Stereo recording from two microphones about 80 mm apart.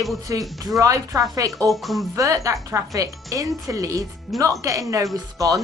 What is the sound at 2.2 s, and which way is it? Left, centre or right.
Speech, right.